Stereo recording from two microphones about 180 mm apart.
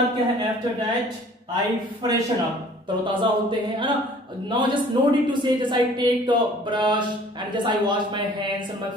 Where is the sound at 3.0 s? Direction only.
25° right (ahead or behind).